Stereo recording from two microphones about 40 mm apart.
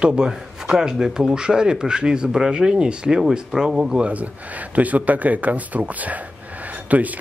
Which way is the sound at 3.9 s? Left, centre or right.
Right.